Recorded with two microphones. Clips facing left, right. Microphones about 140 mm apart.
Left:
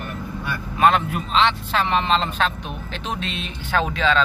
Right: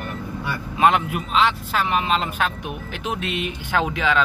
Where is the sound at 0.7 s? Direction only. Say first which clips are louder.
Even; 15° right (ahead or behind).